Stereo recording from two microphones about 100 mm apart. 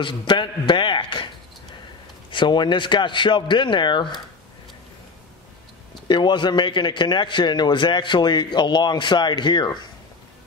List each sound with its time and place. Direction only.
0.0 s a man's voice: 50° left (ahead or behind)
2.3 s a man's voice: 50° left (ahead or behind)
6.0 s a man's voice: 50° left (ahead or behind)